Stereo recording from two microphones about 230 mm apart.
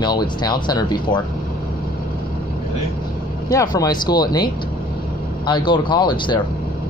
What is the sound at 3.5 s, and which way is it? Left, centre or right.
Speech, centre.